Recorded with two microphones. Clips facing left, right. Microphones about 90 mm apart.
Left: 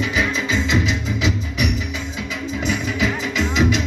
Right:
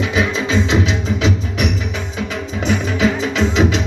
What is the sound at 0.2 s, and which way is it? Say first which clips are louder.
Music: right 5 dB; 25° right (ahead or behind).